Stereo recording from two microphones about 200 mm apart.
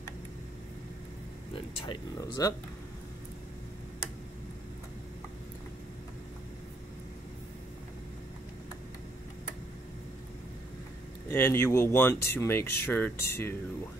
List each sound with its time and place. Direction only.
1.9 s speech: 15° left (ahead or behind)
11.2 s speech: 15° left (ahead or behind)